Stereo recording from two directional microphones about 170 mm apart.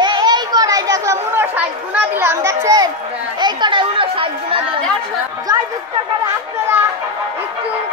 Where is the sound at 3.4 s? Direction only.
30° right (ahead or behind).